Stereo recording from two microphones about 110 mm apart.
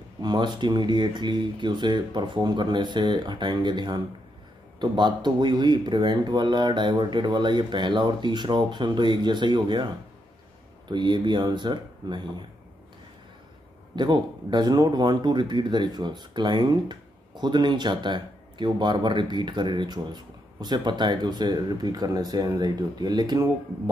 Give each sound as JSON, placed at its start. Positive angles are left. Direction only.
{"t": 0.2, "sound": "speech", "side_deg": -45}
{"t": 10.9, "sound": "speech", "side_deg": -45}
{"t": 13.9, "sound": "speech", "side_deg": -40}